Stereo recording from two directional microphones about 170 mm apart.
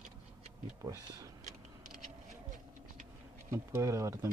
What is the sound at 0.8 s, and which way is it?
Speech, 20° right (ahead or behind).